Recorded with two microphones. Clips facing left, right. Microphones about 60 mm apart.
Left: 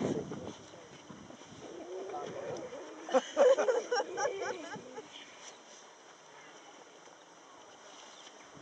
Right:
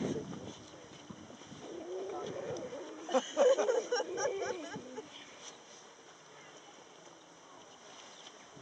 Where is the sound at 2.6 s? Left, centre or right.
Centre.